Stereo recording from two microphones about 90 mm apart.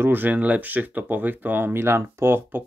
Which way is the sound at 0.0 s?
20° right (ahead or behind).